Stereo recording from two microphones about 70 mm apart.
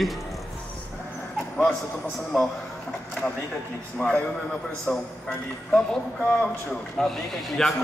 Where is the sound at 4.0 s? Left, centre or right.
Left.